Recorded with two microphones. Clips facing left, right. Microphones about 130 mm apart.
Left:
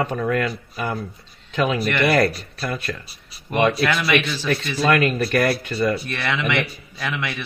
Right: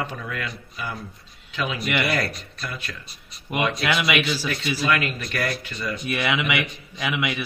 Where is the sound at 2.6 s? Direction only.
45° left (ahead or behind).